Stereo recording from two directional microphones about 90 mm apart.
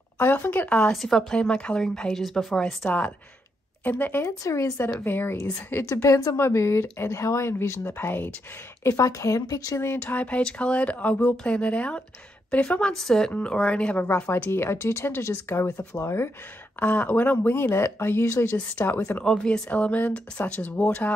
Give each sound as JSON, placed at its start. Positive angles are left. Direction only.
{"t": 0.2, "sound": "speech", "side_deg": 20}
{"t": 3.8, "sound": "speech", "side_deg": 20}
{"t": 4.2, "sound": "speech", "side_deg": 35}
{"t": 6.0, "sound": "speech", "side_deg": 40}
{"t": 6.3, "sound": "speech", "side_deg": 30}
{"t": 8.8, "sound": "speech", "side_deg": 35}
{"t": 9.8, "sound": "speech", "side_deg": 25}
{"t": 16.8, "sound": "speech", "side_deg": 20}
{"t": 18.8, "sound": "speech", "side_deg": 20}
{"t": 19.2, "sound": "speech", "side_deg": 10}